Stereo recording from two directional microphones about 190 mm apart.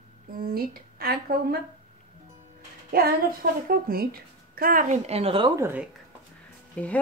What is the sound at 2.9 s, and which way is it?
Speech, 50° right (ahead or behind).